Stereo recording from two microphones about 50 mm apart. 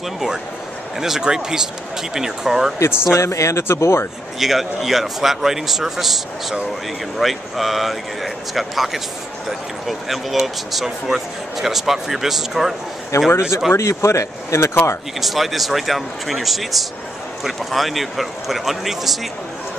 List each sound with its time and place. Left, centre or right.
0.9 s speech: centre
2.8 s speech: left
3.2 s speech: left
4.4 s speech: centre
13.3 s speech: left
13.7 s speech: left
15.1 s speech: centre